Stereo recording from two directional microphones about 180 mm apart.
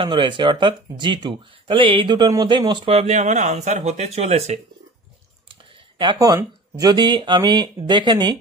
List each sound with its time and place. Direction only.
0.0 s speech: 25° right (ahead or behind)
5.9 s speech: 25° right (ahead or behind)